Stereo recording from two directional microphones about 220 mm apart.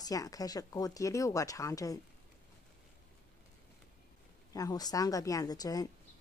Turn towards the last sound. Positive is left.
turn(degrees=15)  # may be behind; listen again after turning